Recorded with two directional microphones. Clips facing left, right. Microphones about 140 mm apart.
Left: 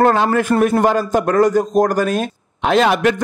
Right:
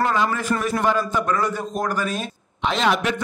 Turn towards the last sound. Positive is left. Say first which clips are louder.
# left 7 dB
turn(degrees=55)  # may be behind; listen again after turning